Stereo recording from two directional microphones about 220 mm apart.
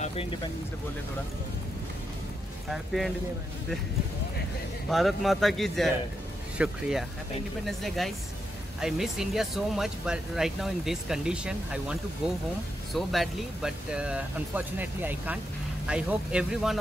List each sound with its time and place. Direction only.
0.0 s music: 25° left (ahead or behind)
2.7 s speech: centre (ahead or behind)
4.8 s speech: centre (ahead or behind)